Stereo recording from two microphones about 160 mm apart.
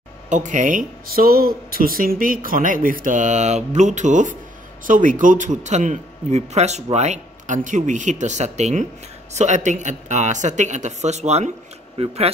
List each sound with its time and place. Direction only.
0.3 s a man's voice: 50° right (ahead or behind)